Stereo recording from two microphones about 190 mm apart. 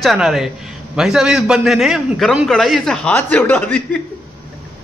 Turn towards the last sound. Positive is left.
turn(degrees=10)  # may be behind; listen again after turning